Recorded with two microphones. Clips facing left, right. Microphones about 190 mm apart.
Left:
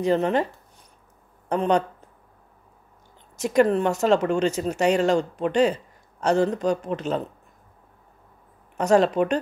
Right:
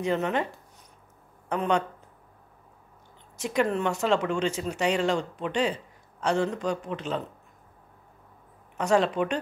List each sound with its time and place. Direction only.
0.0 s speech: 35° left (ahead or behind)
1.5 s speech: 35° left (ahead or behind)
3.3 s speech: 45° left (ahead or behind)
8.7 s speech: 40° left (ahead or behind)